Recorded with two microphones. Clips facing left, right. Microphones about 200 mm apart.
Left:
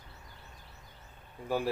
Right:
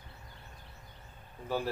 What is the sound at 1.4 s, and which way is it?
Speech, 10° left (ahead or behind).